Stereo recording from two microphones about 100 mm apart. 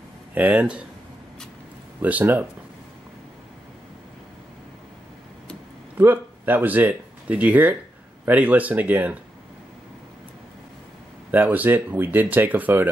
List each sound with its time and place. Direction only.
0.3 s speech: 15° right (ahead or behind)
2.0 s speech: 15° right (ahead or behind)
5.9 s speech: 20° right (ahead or behind)
11.3 s speech: 20° right (ahead or behind)